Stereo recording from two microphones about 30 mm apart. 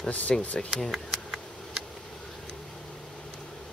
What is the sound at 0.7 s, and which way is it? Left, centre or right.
Speech, centre.